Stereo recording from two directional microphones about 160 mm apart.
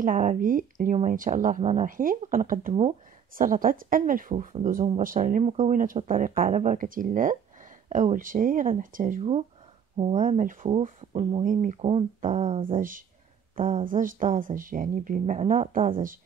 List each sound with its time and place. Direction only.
0.0 s speech: 50° right (ahead or behind)
9.9 s speech: 45° right (ahead or behind)
10.8 s speech: 40° right (ahead or behind)
11.4 s speech: 50° right (ahead or behind)
12.7 s speech: 55° right (ahead or behind)
13.6 s speech: 40° right (ahead or behind)
13.8 s speech: 55° right (ahead or behind); by 16.0 s 40° right (ahead or behind)